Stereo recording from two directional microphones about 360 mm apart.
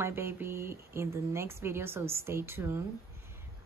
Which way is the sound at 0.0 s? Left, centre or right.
Centre.